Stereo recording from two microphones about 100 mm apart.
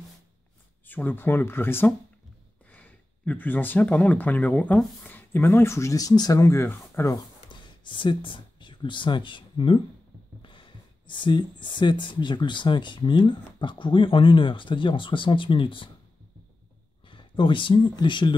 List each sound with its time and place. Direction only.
0.8 s speech: 20° left (ahead or behind)
7.4 s a sound: 55° left (ahead or behind)
10.4 s speech: 55° left (ahead or behind)
17.0 s speech: 55° left (ahead or behind)